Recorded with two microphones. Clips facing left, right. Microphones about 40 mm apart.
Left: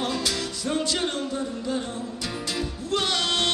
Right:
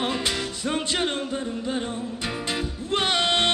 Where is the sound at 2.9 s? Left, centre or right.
Right.